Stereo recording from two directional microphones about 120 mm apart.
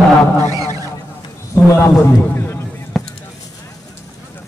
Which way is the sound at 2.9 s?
Centre (ahead or behind).